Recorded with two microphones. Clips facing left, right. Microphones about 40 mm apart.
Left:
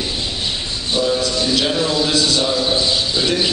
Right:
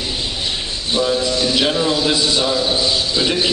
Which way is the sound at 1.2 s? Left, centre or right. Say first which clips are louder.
Right 1 dB; centre.